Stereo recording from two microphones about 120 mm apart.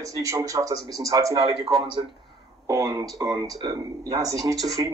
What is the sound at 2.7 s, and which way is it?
A man's voice, 30° right (ahead or behind).